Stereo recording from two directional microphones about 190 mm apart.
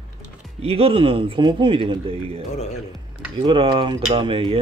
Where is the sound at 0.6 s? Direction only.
30° right (ahead or behind).